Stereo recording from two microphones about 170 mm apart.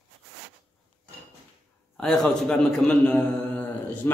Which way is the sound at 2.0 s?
Centre (ahead or behind).